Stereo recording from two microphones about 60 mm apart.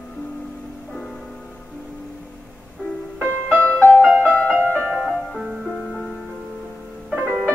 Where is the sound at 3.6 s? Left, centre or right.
Left.